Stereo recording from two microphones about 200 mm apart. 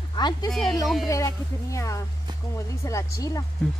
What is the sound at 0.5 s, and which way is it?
Speech, centre (ahead or behind).